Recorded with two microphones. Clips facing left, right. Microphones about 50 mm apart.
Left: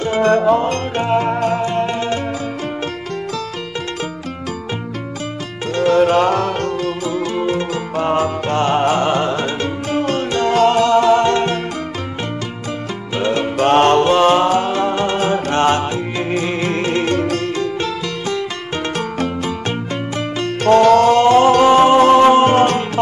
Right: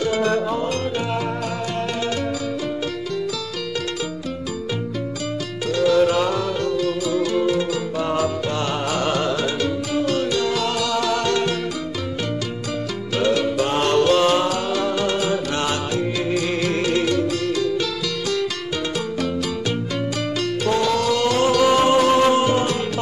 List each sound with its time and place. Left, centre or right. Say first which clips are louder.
0.0 s music: left 6 dB; left
5.8 s music: left 4 dB; left
7.1 s music: left 1 dB; left
13.1 s music: left 1 dB; left
13.6 s music: left 8 dB; left
13.9 s music: left 4 dB; left
18.9 s music: left 4 dB; left
20.6 s music: left 11 dB; left